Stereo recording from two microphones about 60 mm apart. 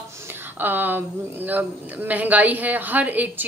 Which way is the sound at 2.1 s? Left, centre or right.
Right.